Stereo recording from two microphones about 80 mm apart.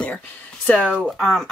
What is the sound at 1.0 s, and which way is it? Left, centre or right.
Speech, centre.